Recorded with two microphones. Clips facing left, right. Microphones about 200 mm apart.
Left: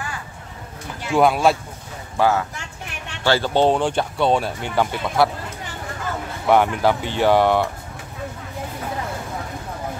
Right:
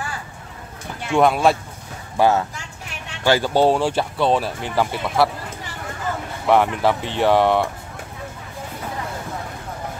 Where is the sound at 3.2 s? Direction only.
15° right (ahead or behind).